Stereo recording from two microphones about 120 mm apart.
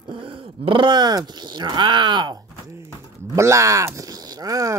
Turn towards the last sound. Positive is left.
turn(degrees=-30)  # may be behind; listen again after turning